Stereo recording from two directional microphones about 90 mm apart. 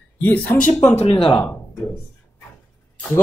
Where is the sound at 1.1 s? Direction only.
85° left.